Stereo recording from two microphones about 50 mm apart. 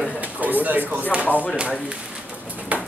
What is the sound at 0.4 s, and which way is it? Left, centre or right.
Speech, right.